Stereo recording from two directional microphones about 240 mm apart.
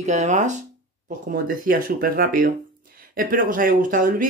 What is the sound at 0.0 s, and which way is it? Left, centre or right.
Speech, right.